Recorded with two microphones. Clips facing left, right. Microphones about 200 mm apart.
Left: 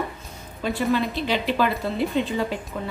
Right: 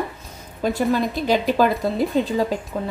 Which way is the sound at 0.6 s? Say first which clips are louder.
Right 3 dB; 40° right (ahead or behind).